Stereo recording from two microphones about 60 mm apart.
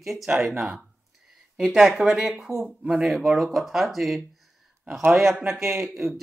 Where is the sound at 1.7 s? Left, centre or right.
Centre.